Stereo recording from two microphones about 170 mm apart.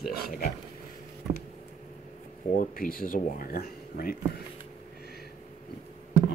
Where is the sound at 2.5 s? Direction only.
55° left (ahead or behind).